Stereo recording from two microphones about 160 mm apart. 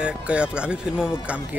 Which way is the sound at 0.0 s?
5° right (ahead or behind).